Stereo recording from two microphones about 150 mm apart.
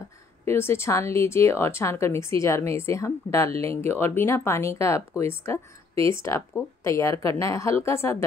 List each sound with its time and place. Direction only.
0.5 s a woman's voice: 15° left (ahead or behind)